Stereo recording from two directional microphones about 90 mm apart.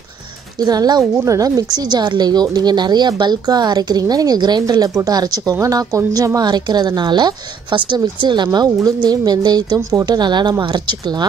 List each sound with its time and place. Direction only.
0.6 s speech: 45° right (ahead or behind)
8.5 s speech: 40° right (ahead or behind)
9.8 s speech: 40° right (ahead or behind)
10.0 s speech: 55° right (ahead or behind)